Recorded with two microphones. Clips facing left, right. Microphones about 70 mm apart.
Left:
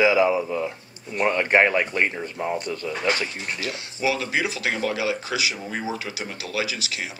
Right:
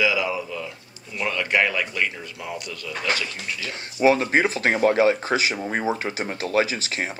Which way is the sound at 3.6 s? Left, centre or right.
Right.